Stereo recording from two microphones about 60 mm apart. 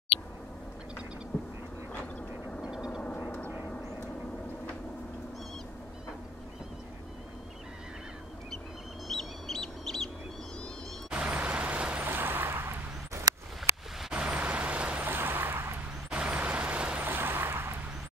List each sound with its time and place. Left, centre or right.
2.7 s vehicle: centre
9.0 s fowl: centre
11.1 s vehicle: right
12.1 s vehicle: right
14.1 s vehicle: right
15.0 s vehicle: right
16.2 s vehicle: right
17.0 s vehicle: right